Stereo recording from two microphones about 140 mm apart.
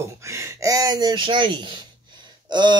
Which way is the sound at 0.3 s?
20° right (ahead or behind).